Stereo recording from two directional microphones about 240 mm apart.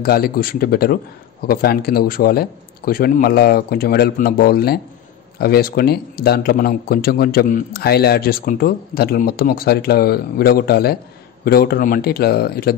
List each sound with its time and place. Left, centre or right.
0.0 s speech: left